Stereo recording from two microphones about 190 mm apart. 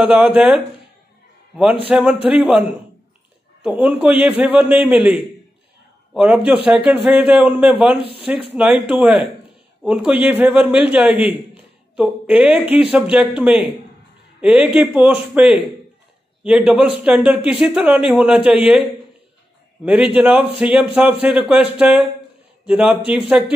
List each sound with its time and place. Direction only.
0.0 s a man's voice: 10° right (ahead or behind)
1.9 s a man's voice: 5° right (ahead or behind)
19.8 s a man's voice: 5° right (ahead or behind)